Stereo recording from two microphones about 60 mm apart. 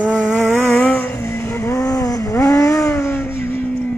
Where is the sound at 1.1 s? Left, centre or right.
Left.